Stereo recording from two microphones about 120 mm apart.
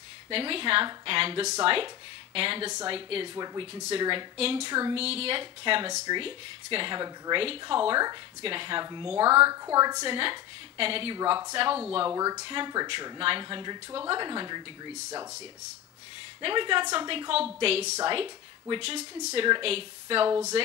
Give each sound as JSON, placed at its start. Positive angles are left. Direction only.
{"t": 0.3, "sound": "speech", "side_deg": -50}
{"t": 9.2, "sound": "a woman's voice", "side_deg": -25}
{"t": 10.0, "sound": "speech", "side_deg": -45}
{"t": 11.1, "sound": "speech", "side_deg": -35}
{"t": 11.5, "sound": "speech", "side_deg": -50}
{"t": 12.1, "sound": "a woman's voice", "side_deg": -30}
{"t": 12.4, "sound": "speech", "side_deg": -40}
{"t": 16.3, "sound": "speech", "side_deg": -45}
{"t": 17.3, "sound": "a woman's voice", "side_deg": -55}
{"t": 18.0, "sound": "speech", "side_deg": -45}
{"t": 20.2, "sound": "a woman's voice", "side_deg": -25}